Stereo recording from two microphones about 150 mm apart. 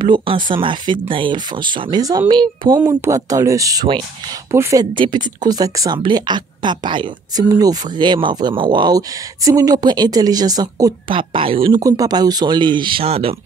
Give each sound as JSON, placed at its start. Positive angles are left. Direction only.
{"t": 0.0, "sound": "speech", "side_deg": -35}
{"t": 4.9, "sound": "speech", "side_deg": -30}
{"t": 11.8, "sound": "speech", "side_deg": -25}